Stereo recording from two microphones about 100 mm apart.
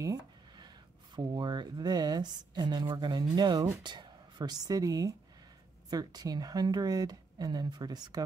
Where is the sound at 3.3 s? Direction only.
45° right (ahead or behind).